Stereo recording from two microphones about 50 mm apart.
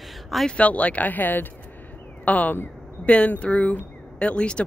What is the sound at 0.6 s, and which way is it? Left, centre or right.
Speech, left.